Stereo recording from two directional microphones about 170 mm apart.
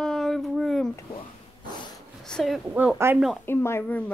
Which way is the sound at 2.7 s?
10° right (ahead or behind).